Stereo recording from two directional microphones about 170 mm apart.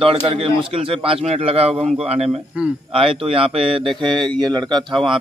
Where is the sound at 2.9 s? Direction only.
35° right (ahead or behind).